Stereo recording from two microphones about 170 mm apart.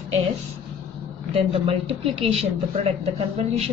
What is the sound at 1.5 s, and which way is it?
Speech, 35° right (ahead or behind).